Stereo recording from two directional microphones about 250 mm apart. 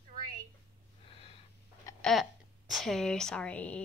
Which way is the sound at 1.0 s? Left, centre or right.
Left.